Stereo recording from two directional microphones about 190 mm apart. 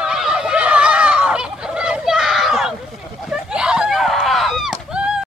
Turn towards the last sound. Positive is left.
turn(degrees=-5)  # may be behind; listen again after turning